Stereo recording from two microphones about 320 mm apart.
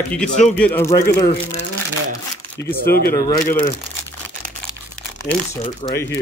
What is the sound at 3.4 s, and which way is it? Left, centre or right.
Speech, left.